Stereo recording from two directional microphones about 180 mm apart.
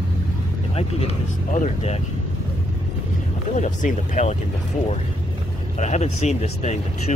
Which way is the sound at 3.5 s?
40° left (ahead or behind).